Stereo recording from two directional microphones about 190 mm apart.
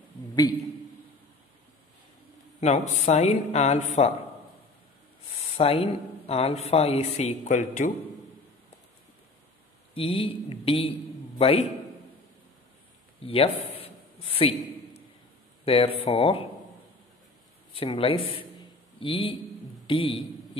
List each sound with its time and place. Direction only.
2.6 s speech: 35° left (ahead or behind)
5.4 s speech: 30° left (ahead or behind)
9.9 s speech: 30° left (ahead or behind)
13.2 s a sound: 30° left (ahead or behind)
15.6 s speech: 30° left (ahead or behind)
17.7 s speech: 30° left (ahead or behind)